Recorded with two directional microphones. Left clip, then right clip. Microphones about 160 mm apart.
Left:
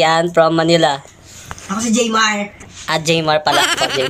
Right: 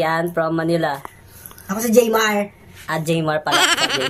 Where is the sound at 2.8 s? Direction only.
Centre (ahead or behind).